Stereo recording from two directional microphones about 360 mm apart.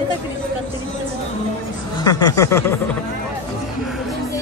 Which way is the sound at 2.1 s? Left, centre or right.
Centre.